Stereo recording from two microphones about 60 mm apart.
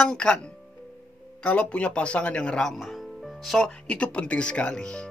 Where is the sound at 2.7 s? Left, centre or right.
Centre.